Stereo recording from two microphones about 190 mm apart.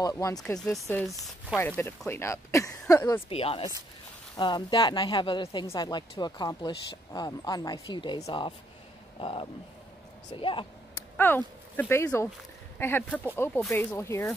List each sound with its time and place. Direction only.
0.5 s chopping: 5° left (ahead or behind)
1.6 s speech: 10° left (ahead or behind)
3.3 s speech: 30° left (ahead or behind)
11.1 s speech: 10° left (ahead or behind)